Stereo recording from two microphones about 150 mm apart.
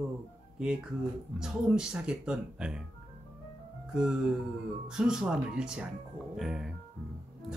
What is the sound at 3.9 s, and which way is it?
Music, 5° right (ahead or behind).